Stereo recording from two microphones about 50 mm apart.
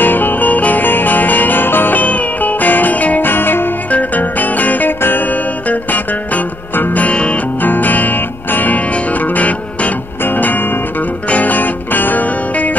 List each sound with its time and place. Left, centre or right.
0.0 s jingle bell: left
3.9 s music: left